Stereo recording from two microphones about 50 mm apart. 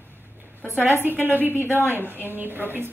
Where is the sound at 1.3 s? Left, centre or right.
Right.